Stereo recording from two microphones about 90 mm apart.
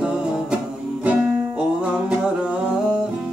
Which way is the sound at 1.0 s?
15° right (ahead or behind).